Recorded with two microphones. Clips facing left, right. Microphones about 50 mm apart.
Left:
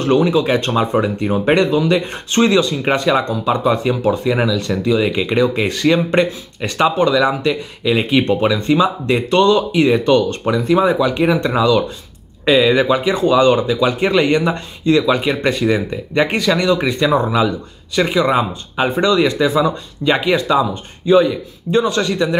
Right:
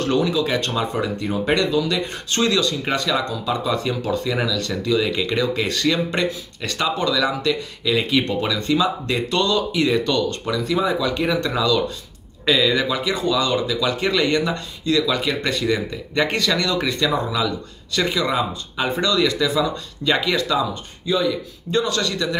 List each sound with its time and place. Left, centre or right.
0.0 s speech: left
21.0 s speech: left
21.7 s speech: left